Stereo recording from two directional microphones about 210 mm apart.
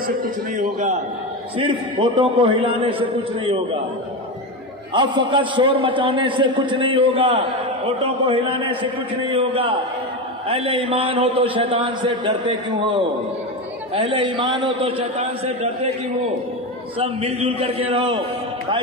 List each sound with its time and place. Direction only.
0.0 s a sound: 40° right (ahead or behind)
1.6 s a man's voice: 25° right (ahead or behind)
4.9 s a man's voice: 20° right (ahead or behind)
13.9 s a man's voice: 25° right (ahead or behind)
17.0 s a man's voice: 30° right (ahead or behind)